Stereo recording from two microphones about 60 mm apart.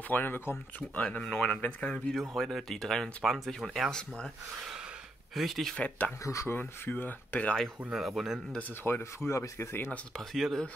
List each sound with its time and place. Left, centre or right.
0.1 s speech: left
1.1 s speech: centre
2.1 s speech: centre
5.3 s speech: centre
5.8 s speech: left
6.2 s speech: left
6.5 s speech: left
7.9 s speech: centre
8.8 s speech: left
10.1 s speech: centre